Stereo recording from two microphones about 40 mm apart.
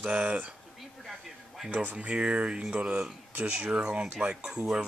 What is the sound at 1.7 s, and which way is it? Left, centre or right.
Speech, right.